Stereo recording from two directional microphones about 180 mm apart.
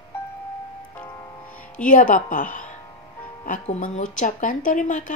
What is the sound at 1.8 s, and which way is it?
Speech, 45° left (ahead or behind).